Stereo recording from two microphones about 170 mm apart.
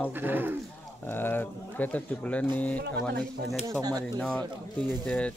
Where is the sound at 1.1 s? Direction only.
10° left (ahead or behind).